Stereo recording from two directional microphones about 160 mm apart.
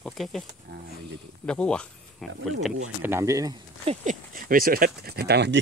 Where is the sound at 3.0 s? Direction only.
15° right (ahead or behind).